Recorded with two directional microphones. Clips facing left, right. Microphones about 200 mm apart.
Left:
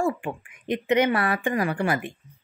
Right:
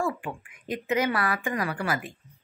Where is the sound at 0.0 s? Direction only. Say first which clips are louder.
Left 4 dB; 25° left (ahead or behind).